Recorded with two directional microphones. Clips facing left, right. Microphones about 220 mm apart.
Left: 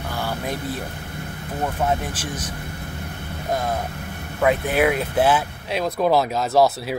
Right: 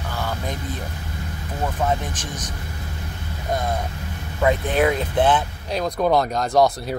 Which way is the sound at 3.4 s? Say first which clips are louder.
Even; 5° left (ahead or behind).